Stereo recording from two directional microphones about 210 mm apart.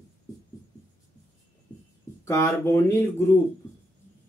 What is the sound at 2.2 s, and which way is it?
Speech, 15° left (ahead or behind).